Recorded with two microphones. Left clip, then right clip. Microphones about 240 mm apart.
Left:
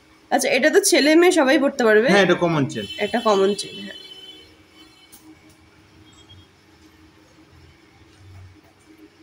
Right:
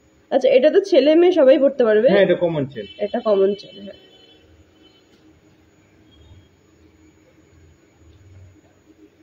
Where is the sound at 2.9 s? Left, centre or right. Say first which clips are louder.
Right 1 dB; centre.